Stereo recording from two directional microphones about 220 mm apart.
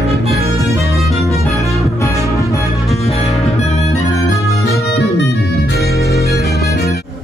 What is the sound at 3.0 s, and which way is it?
Music, 30° left (ahead or behind).